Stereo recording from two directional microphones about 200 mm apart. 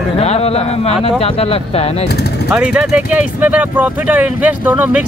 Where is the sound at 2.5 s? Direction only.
5° right (ahead or behind).